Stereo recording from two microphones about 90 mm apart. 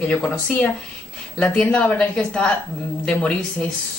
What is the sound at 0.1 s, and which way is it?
Speech, 15° left (ahead or behind).